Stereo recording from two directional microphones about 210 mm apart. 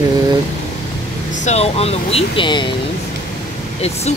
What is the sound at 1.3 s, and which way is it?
Speech, 35° left (ahead or behind).